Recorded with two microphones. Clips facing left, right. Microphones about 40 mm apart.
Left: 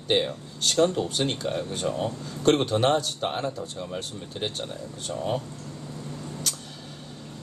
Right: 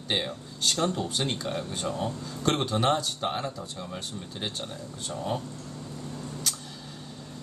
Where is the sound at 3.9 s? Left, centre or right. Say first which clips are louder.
Left 3 dB; centre.